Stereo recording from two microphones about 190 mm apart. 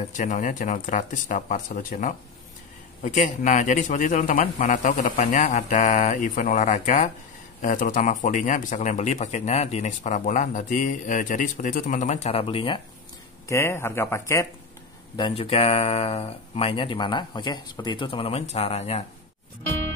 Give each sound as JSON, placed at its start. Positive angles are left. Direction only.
{"t": 0.1, "sound": "a man's voice", "side_deg": 40}
{"t": 13.5, "sound": "speech", "side_deg": 15}
{"t": 15.1, "sound": "speech", "side_deg": 30}